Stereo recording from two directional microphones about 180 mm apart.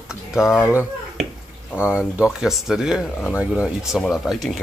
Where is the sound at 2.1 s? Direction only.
5° right (ahead or behind).